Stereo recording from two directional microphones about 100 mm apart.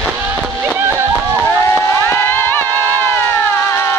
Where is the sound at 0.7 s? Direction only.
25° right (ahead or behind).